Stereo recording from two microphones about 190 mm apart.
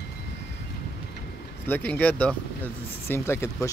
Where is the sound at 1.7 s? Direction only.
10° left (ahead or behind).